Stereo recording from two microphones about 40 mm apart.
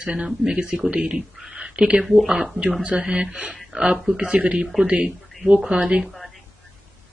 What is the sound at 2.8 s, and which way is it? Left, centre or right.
Speech, right.